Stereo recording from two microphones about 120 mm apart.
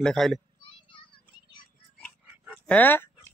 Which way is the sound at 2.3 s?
15° right (ahead or behind).